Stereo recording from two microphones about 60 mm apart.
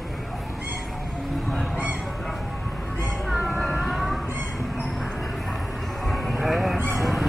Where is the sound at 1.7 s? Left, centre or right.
Right.